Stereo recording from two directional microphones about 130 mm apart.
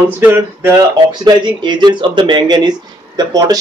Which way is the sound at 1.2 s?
35° right (ahead or behind).